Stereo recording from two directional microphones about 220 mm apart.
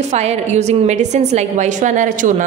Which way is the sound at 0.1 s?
30° right (ahead or behind).